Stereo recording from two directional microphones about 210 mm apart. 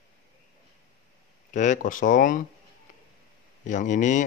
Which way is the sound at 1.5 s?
35° left (ahead or behind).